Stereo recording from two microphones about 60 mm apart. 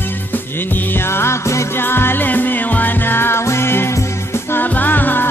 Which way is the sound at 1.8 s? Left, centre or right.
Left.